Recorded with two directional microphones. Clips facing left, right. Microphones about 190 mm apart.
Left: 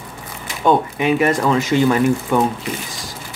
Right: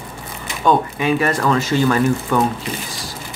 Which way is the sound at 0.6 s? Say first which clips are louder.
Left 1 dB; 20° left (ahead or behind).